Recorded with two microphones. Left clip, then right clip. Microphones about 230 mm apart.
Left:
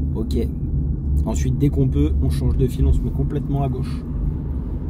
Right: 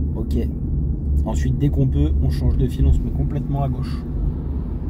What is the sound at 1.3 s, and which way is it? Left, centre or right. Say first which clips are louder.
Speech: left 2 dB; centre.